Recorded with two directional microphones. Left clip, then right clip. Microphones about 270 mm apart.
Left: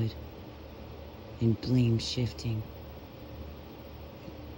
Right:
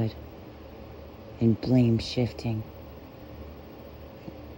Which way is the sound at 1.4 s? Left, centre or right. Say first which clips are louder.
Right 6 dB; right.